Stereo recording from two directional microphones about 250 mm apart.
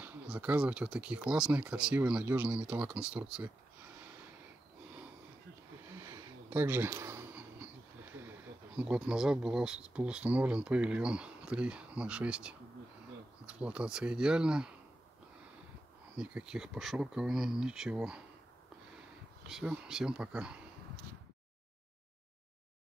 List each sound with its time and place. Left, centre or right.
0.0 s speech: centre
5.9 s a sound: centre
8.7 s speech: centre
16.2 s speech: centre
19.4 s speech: centre